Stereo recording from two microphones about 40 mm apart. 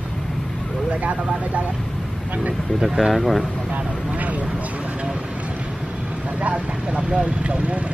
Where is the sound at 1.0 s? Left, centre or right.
Right.